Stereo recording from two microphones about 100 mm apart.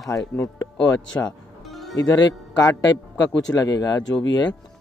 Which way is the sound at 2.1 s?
40° left (ahead or behind).